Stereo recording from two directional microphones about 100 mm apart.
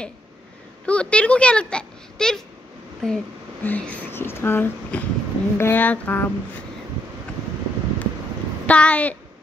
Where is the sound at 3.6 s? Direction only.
15° left (ahead or behind).